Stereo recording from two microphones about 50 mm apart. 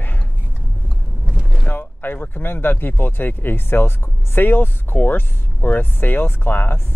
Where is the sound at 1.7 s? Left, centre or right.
Left.